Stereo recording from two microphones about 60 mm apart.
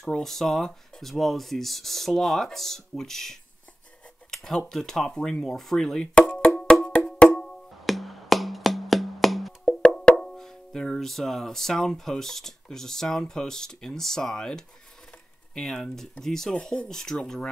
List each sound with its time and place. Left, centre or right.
0.2 s speech: centre
6.6 s wood block: centre
7.8 s music: centre
9.7 s wood block: centre
10.2 s speech: centre